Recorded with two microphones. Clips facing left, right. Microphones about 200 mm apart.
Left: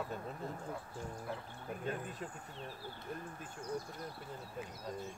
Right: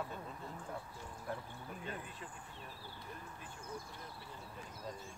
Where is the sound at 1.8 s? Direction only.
45° left (ahead or behind).